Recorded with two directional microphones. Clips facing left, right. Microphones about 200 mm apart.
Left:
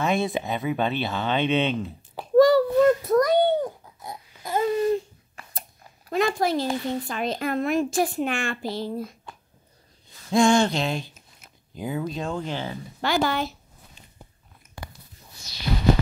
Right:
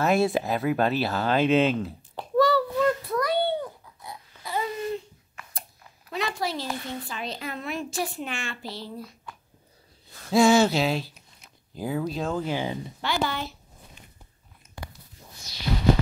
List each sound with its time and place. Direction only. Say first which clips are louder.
0.0 s speech: right 2 dB; centre (ahead or behind)
2.3 s a sound: left 6 dB; 45° left (ahead or behind)
6.0 s a woman's voice: left 7 dB; 45° left (ahead or behind)
10.3 s speech: right 1 dB; 5° right (ahead or behind)
13.0 s a woman's voice: left 5 dB; 45° left (ahead or behind)